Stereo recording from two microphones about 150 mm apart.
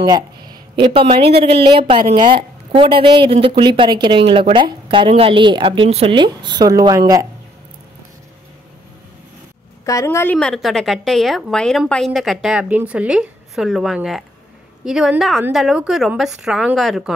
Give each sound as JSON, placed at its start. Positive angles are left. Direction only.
{"t": 0.0, "sound": "speech", "side_deg": -25}
{"t": 9.8, "sound": "a woman's voice", "side_deg": 20}